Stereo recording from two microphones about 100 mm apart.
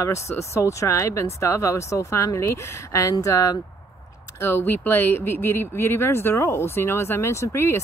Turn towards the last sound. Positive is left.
turn(degrees=25)  # may be behind; listen again after turning